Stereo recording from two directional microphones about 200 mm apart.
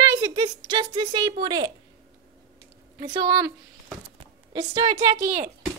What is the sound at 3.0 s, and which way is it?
Speech, 20° right (ahead or behind).